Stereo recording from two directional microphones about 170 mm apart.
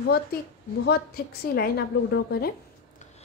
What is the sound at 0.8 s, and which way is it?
A woman's voice, 65° left (ahead or behind).